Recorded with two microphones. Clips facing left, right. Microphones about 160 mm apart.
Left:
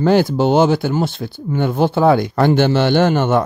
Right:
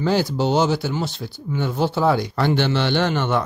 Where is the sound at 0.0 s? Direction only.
55° left (ahead or behind).